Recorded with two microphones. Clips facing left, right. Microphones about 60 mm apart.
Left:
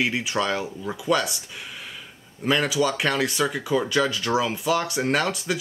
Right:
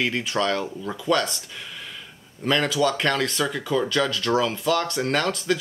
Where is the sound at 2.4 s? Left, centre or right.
Centre.